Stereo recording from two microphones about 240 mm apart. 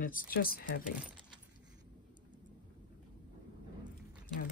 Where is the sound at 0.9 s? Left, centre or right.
Centre.